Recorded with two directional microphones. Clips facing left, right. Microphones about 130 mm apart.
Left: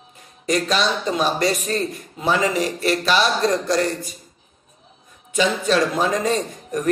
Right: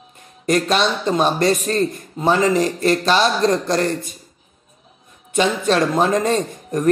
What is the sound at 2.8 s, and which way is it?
Speech, 40° right (ahead or behind).